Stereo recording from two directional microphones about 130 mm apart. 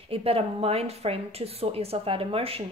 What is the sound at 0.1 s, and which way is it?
A woman's voice, 50° right (ahead or behind).